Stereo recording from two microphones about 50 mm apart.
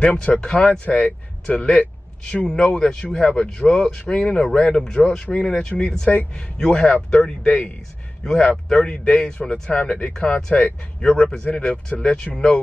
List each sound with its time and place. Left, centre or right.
0.0 s speech: left
0.8 s speech: left
7.4 s speech: left
8.2 s speech: centre; by 10.7 s left
11.0 s speech: centre